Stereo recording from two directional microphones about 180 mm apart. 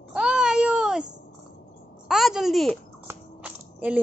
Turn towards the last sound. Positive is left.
turn(degrees=-10)  # may be behind; listen again after turning